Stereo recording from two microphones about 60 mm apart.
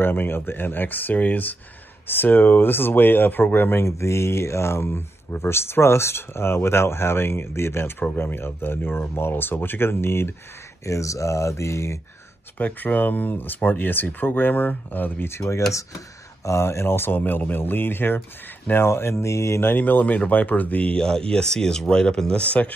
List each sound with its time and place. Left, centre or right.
0.0 s speech: left
3.8 s speech: left
10.9 s speech: left
12.5 s speech: left
15.2 s speech: left
19.6 s speech: left
21.0 s speech: centre